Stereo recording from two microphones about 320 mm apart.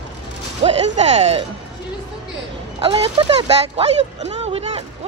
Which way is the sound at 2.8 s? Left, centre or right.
Centre.